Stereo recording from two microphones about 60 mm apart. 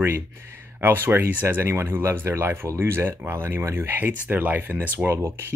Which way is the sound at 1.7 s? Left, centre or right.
Right.